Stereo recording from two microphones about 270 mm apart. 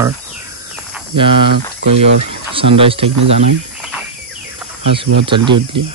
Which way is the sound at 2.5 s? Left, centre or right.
Centre.